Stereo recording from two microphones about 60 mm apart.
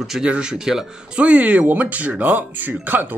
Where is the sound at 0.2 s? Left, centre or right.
Centre.